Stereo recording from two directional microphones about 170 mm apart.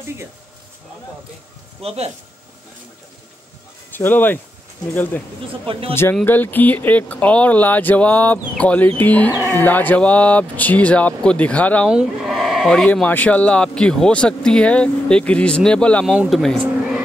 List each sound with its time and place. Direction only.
1.8 s speech: 35° right (ahead or behind)
3.9 s speech: 10° left (ahead or behind)
5.7 s speech: 35° right (ahead or behind)
6.2 s speech: 10° left (ahead or behind)
11.9 s speech: 5° right (ahead or behind)